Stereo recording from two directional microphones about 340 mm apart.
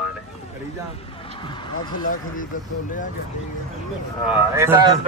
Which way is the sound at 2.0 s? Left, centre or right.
Left.